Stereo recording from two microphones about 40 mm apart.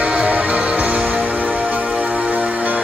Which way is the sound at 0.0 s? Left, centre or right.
Right.